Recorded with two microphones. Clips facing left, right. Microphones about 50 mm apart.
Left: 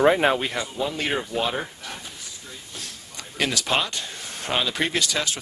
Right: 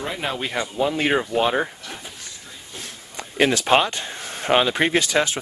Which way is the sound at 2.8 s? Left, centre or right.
Right.